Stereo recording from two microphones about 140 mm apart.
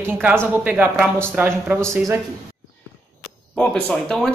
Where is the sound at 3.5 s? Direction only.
5° left (ahead or behind).